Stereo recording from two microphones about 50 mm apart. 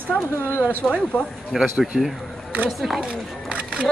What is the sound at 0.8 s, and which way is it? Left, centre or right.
Speech, centre.